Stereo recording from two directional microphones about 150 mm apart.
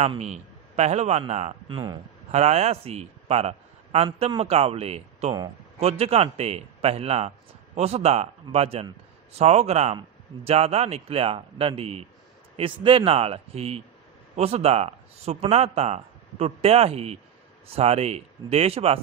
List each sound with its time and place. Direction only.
0.0 s a man's voice: 45° right (ahead or behind)
1.7 s speech: 30° right (ahead or behind)
2.3 s a man's voice: 45° right (ahead or behind)